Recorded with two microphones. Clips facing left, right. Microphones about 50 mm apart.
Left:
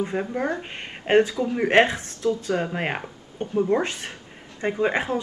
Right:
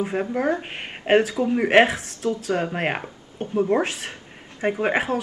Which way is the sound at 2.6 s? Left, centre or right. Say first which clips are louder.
Right 2 dB; centre.